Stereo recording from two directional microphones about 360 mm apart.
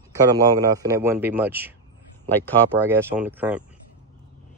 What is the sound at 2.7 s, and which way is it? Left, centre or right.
Speech, centre.